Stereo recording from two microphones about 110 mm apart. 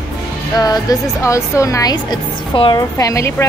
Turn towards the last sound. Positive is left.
turn(degrees=30)  # may be behind; listen again after turning